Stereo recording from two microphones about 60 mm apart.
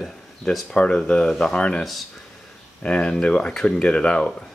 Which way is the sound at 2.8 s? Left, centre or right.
Centre.